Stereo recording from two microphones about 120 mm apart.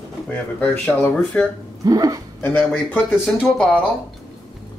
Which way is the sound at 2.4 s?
15° left (ahead or behind).